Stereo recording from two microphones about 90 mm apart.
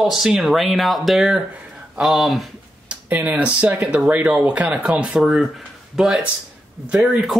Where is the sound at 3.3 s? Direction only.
15° right (ahead or behind).